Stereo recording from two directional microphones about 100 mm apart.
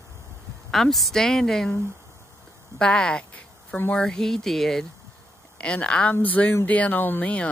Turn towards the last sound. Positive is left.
turn(degrees=15)  # may be behind; listen again after turning